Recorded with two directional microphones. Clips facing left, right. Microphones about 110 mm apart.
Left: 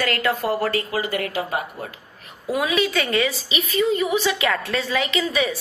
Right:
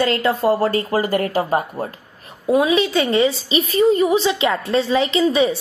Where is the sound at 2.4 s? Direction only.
30° right (ahead or behind).